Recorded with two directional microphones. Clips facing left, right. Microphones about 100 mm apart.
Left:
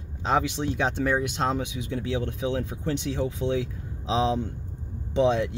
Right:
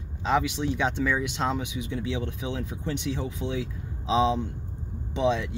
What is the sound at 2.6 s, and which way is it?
Speech, 40° left (ahead or behind).